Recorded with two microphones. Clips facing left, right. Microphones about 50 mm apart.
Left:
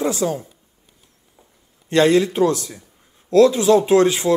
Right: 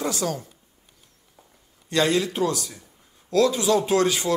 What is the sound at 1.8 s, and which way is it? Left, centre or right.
Speech, left.